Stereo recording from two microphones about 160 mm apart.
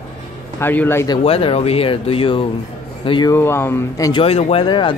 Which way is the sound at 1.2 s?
40° left (ahead or behind).